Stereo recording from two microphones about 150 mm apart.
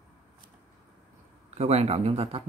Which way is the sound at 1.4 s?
45° right (ahead or behind).